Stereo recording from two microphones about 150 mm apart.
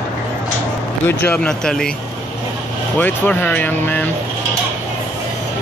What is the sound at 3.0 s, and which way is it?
Speech, 15° left (ahead or behind).